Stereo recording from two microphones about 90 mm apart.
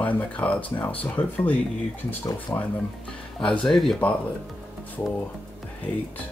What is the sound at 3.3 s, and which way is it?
Speech, 5° left (ahead or behind).